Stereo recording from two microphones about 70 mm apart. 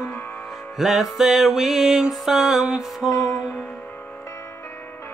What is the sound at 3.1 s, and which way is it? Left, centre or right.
Music, left.